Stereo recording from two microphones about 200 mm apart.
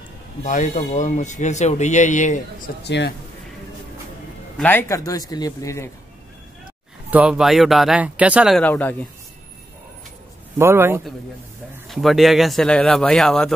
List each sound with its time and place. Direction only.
0.4 s speech: 35° left (ahead or behind)
2.8 s speech: 60° left (ahead or behind)
4.6 s speech: 10° left (ahead or behind)
7.1 s speech: 5° right (ahead or behind)
10.6 s a man's voice: 10° right (ahead or behind)
11.9 s speech: centre (ahead or behind)